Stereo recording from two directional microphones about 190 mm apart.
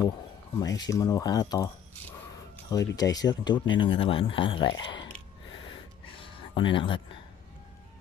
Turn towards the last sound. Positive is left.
turn(degrees=25)  # may be behind; listen again after turning